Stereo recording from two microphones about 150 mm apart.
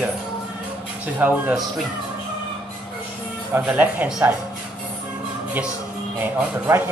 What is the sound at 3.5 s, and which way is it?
Speech, 10° right (ahead or behind).